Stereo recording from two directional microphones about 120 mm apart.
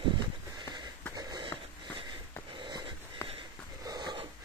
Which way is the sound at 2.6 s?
40° right (ahead or behind).